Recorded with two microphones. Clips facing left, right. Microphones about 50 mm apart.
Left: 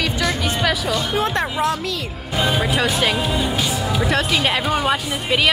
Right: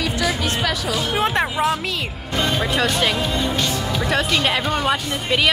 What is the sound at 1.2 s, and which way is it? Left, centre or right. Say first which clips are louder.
Speech: right 1 dB; centre.